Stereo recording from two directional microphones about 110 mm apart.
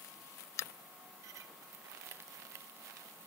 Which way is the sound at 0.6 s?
25° left (ahead or behind).